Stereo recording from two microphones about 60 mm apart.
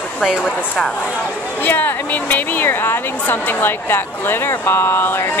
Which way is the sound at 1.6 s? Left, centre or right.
Left.